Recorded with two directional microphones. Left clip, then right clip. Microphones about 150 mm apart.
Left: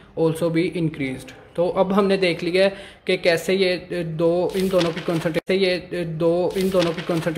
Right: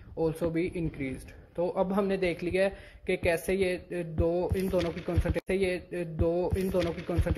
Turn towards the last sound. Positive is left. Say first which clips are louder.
# left 10 dB
turn(degrees=-30)  # may be behind; listen again after turning